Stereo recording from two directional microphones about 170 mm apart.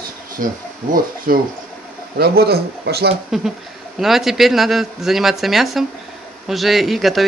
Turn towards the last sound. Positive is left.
turn(degrees=0)  # may be behind; listen again after turning